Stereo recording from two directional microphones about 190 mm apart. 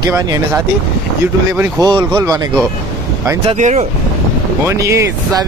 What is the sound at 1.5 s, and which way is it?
Speech, 10° right (ahead or behind).